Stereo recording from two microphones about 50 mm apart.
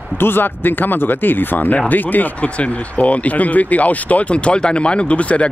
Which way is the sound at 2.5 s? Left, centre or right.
Left.